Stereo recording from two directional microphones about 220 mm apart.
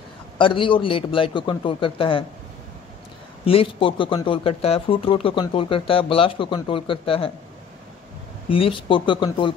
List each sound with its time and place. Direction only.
0.4 s speech: 20° left (ahead or behind)
3.4 s speech: 25° left (ahead or behind)
8.5 s speech: 25° left (ahead or behind)